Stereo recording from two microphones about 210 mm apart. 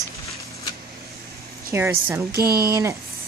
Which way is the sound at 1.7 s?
10° right (ahead or behind).